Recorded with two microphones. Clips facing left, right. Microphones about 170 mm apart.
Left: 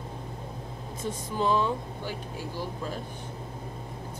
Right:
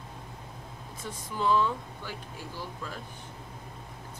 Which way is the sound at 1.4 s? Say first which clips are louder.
Left 1 dB; 20° left (ahead or behind).